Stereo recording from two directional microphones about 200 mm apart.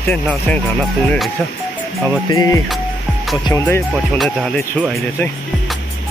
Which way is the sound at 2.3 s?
15° left (ahead or behind).